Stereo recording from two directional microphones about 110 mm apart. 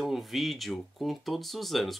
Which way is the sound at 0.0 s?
Centre (ahead or behind).